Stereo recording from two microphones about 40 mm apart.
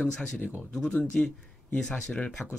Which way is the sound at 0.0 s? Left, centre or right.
Left.